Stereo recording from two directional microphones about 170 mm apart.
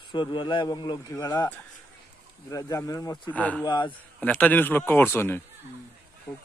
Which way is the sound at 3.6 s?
25° left (ahead or behind).